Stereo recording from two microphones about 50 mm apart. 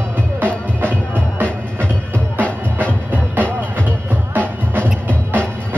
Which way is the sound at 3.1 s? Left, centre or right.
Right.